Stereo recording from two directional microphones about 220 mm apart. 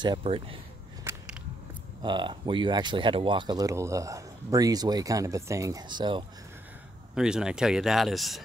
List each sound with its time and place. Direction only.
0.0 s speech: 20° right (ahead or behind)
1.1 s a sound: 10° right (ahead or behind)
2.0 s speech: 20° right (ahead or behind)
7.2 s speech: 5° right (ahead or behind)